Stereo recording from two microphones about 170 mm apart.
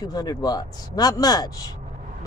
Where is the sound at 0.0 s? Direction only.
25° left (ahead or behind).